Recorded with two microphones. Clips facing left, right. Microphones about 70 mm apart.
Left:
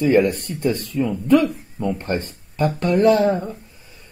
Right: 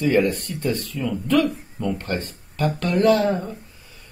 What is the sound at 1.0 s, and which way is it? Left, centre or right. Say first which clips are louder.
Speech: left 3 dB; left.